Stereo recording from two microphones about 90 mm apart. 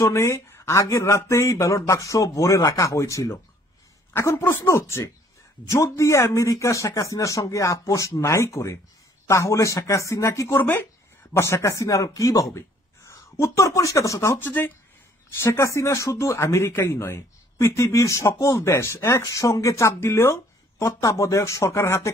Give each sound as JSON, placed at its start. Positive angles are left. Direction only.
{"t": 0.0, "sound": "speech", "side_deg": 30}
{"t": 10.6, "sound": "speech", "side_deg": 20}